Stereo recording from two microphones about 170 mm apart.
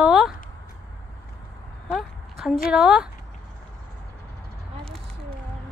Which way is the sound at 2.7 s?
5° right (ahead or behind).